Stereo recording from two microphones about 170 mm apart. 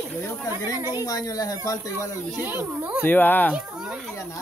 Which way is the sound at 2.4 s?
10° right (ahead or behind).